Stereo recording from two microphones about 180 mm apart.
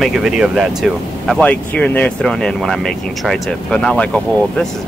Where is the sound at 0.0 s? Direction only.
Centre (ahead or behind).